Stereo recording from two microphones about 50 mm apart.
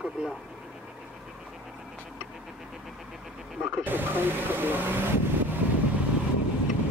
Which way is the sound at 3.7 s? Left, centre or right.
Right.